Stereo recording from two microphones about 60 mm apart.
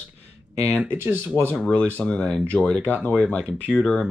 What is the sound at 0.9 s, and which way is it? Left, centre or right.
Speech, right.